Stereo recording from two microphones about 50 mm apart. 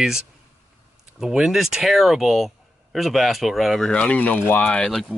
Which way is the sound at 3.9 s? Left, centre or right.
Left.